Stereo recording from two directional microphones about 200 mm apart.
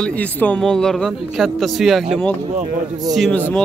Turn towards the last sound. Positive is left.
turn(degrees=0)  # may be behind; listen again after turning